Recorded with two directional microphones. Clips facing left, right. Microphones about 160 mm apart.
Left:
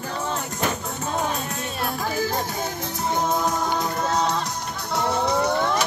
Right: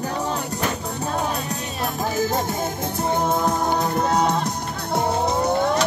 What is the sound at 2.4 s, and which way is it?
Music, 50° right (ahead or behind).